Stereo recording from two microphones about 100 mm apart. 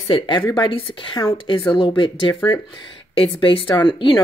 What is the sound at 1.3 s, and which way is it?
Speech, 60° left (ahead or behind).